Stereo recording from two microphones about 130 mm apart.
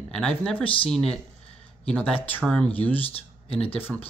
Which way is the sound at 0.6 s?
45° left (ahead or behind).